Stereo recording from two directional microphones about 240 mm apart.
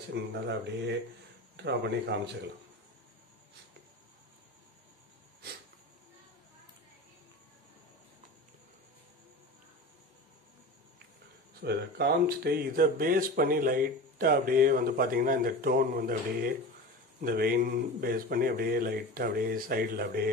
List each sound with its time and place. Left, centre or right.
0.1 s speech: right
11.6 s speech: right